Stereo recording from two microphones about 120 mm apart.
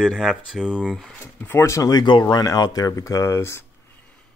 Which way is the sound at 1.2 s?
20° left (ahead or behind).